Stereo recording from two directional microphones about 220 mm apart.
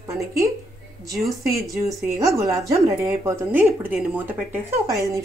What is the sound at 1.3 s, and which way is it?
Speech, 15° right (ahead or behind).